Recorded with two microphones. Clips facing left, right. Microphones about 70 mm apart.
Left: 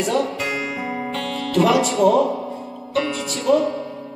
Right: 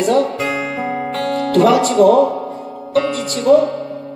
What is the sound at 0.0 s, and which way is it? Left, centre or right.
Speech, right.